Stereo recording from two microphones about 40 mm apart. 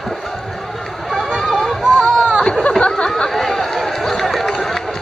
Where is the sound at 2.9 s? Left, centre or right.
Centre.